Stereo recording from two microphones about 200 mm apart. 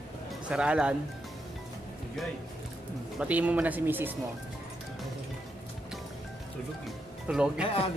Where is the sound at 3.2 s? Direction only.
5° right (ahead or behind).